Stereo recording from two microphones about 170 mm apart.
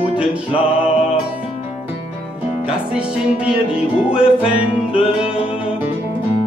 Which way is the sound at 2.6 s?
5° right (ahead or behind).